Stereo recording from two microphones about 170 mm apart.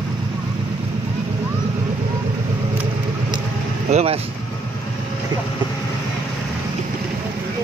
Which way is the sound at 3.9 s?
40° right (ahead or behind).